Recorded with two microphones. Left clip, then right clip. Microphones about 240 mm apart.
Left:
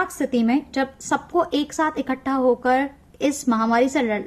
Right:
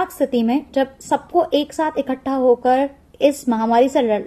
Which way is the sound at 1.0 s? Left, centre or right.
Left.